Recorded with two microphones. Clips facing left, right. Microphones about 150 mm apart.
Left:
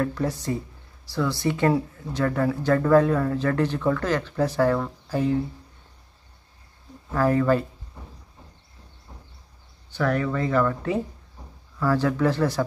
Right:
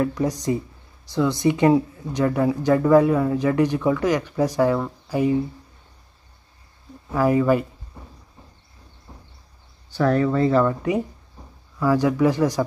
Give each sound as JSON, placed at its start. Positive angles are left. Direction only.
{"t": 0.0, "sound": "speech", "side_deg": -15}
{"t": 7.1, "sound": "speech", "side_deg": -10}
{"t": 9.8, "sound": "speech", "side_deg": -35}
{"t": 10.7, "sound": "speech", "side_deg": -15}